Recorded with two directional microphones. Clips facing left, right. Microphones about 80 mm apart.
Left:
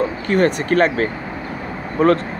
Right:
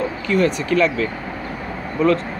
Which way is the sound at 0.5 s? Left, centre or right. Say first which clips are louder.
Left 2 dB; left.